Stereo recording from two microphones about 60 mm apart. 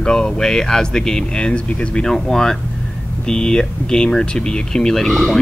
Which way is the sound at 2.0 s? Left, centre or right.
Centre.